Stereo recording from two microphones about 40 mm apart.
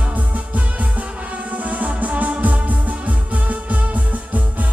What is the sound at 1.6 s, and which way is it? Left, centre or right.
Music, right.